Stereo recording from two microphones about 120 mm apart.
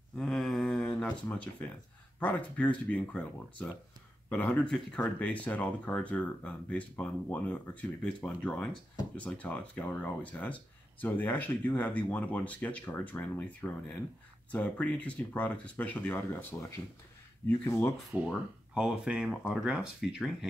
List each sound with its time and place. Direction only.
0.2 s a sound: centre (ahead or behind)
2.1 s speech: 10° left (ahead or behind)
17.6 s speech: 20° left (ahead or behind)
18.1 s speech: 10° right (ahead or behind)